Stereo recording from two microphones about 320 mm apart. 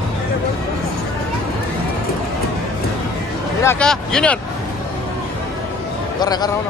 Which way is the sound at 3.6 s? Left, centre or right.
Centre.